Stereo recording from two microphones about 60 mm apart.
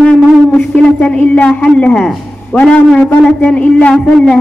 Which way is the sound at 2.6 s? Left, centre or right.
Centre.